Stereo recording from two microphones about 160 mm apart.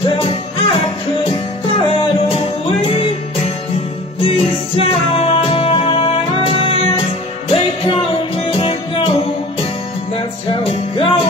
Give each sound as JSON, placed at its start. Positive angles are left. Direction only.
{"t": 0.2, "sound": "music", "side_deg": 35}
{"t": 10.1, "sound": "music", "side_deg": 35}